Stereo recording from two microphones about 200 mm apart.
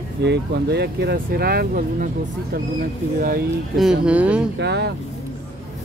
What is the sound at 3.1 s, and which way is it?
Speech, 45° right (ahead or behind).